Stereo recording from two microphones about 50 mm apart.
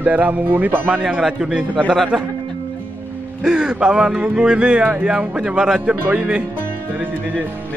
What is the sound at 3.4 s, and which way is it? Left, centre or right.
A man's voice, centre.